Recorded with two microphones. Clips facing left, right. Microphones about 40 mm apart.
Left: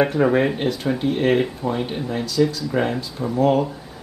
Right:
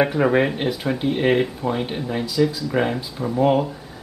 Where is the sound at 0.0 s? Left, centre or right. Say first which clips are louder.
Even; centre.